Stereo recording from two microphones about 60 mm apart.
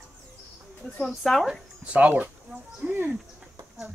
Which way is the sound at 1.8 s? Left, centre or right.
Right.